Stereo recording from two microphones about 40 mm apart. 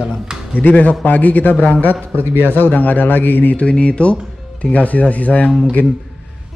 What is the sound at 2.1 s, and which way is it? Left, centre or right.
Speech, left.